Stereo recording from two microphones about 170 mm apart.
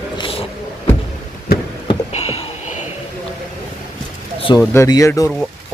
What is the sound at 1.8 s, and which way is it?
Boat, 35° left (ahead or behind).